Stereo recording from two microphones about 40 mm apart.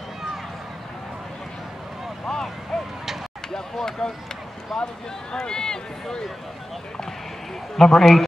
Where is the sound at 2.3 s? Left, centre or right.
Centre.